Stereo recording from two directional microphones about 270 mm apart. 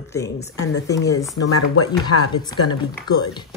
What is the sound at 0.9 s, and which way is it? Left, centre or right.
Speech, centre.